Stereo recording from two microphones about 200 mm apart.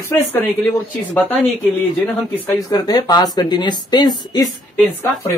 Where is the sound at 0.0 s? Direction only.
5° left (ahead or behind).